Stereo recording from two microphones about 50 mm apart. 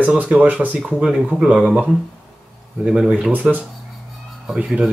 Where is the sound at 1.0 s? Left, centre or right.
Centre.